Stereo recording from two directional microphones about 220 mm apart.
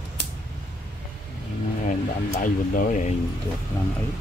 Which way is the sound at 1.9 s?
35° left (ahead or behind).